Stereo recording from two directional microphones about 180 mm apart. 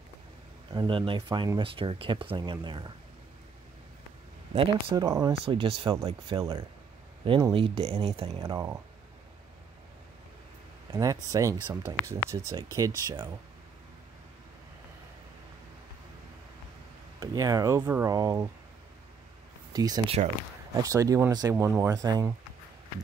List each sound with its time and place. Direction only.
0.7 s speech: 25° right (ahead or behind)
4.6 s speech: 30° right (ahead or behind)
5.0 s speech: 15° right (ahead or behind)
5.4 s speech: 30° right (ahead or behind)
8.4 s speech: 20° right (ahead or behind)
10.9 s speech: 20° right (ahead or behind)
17.2 s speech: 20° right (ahead or behind)
19.7 s speech: 20° right (ahead or behind)